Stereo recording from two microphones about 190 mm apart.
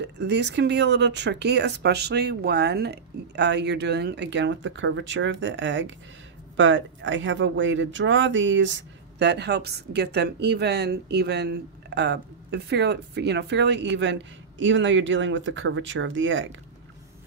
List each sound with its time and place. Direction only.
0.0 s a woman's voice: 65° right (ahead or behind)
9.2 s a woman's voice: 65° right (ahead or behind); by 16.4 s 85° right